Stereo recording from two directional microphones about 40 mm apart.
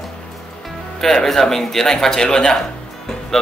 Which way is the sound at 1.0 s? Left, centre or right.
Centre.